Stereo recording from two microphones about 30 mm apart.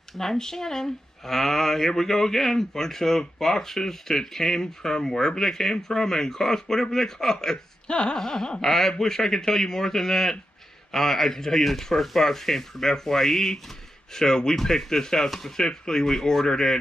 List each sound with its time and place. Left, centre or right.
0.2 s speech: centre
7.9 s a sound: left
8.2 s speech: centre
15.6 s speech: left